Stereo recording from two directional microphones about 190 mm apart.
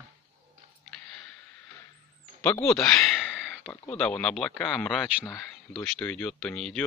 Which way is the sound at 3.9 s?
5° left (ahead or behind).